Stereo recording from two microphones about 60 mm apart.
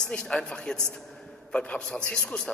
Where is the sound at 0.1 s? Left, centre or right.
Centre.